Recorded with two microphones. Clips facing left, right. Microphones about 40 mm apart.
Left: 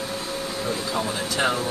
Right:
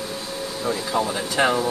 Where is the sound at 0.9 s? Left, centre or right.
Centre.